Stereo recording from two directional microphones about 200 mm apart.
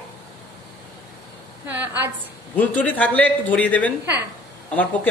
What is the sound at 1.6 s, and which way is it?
Speech, 10° right (ahead or behind).